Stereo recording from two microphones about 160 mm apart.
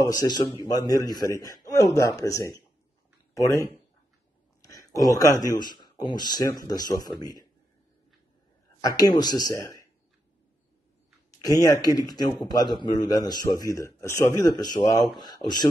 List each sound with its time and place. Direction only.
0.0 s a man's voice: 20° left (ahead or behind)
8.8 s a man's voice: 25° left (ahead or behind)
11.4 s a man's voice: 25° left (ahead or behind)